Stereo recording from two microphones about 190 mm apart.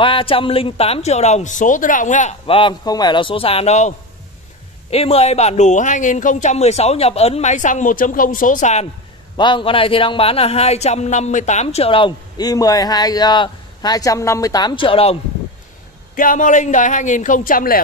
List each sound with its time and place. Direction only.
0.0 s speech: 25° left (ahead or behind)
4.9 s speech: 30° left (ahead or behind)
9.4 s speech: 25° left (ahead or behind)
16.2 s speech: 45° left (ahead or behind)